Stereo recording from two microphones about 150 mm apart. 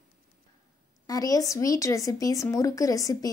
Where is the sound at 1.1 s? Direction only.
25° left (ahead or behind).